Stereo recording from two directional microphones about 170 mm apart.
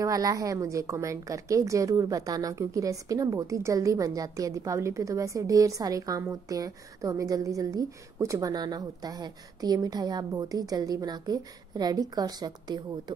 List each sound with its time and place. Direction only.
0.0 s a woman's voice: 20° right (ahead or behind)